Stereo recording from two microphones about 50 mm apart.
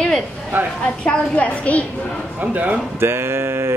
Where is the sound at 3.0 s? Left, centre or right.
Right.